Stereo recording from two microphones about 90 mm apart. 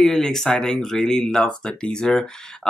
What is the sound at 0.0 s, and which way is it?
Speech, 5° left (ahead or behind).